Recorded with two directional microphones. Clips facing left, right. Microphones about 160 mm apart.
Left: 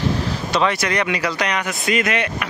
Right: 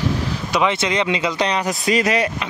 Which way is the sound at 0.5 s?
20° right (ahead or behind).